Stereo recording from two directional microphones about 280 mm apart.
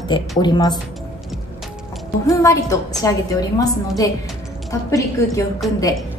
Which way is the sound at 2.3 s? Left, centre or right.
Centre.